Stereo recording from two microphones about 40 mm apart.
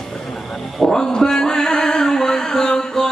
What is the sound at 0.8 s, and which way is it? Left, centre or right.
Music, centre.